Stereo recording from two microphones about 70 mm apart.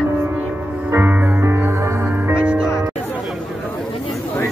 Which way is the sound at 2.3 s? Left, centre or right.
Centre.